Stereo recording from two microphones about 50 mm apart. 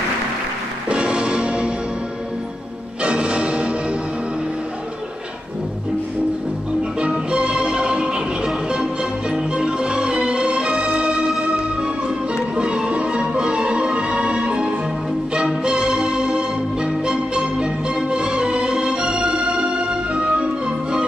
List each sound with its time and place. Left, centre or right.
0.8 s music: right
3.0 s music: right
6.8 s music: right